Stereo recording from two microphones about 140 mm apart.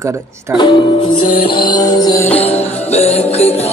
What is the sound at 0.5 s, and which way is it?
Music, 35° left (ahead or behind).